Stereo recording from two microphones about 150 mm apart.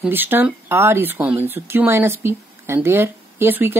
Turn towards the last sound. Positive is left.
turn(degrees=-15)  # may be behind; listen again after turning